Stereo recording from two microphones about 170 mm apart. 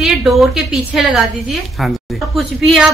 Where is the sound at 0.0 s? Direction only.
Centre (ahead or behind).